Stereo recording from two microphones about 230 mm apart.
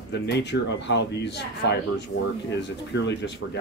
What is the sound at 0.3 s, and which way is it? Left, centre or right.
A man's voice, left.